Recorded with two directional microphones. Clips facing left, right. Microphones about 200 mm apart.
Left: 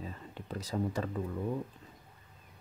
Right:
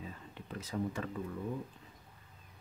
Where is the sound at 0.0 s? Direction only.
35° left (ahead or behind).